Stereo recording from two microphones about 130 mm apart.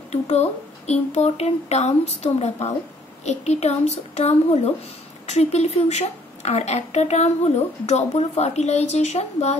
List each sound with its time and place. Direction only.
0.1 s a woman's voice: 55° left (ahead or behind)